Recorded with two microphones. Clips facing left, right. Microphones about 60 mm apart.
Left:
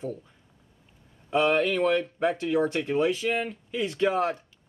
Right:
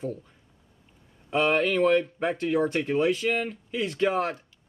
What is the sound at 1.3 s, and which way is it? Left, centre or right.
Speech, centre.